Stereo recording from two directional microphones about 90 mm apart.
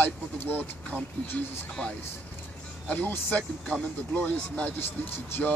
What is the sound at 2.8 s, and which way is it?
Speech, 20° left (ahead or behind).